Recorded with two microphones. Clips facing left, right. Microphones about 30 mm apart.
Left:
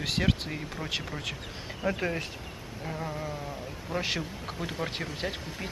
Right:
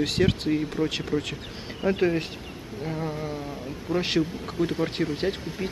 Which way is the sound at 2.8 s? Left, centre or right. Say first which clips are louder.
Right 4 dB; centre.